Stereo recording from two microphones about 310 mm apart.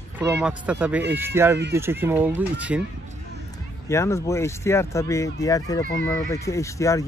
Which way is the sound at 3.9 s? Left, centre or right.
Centre.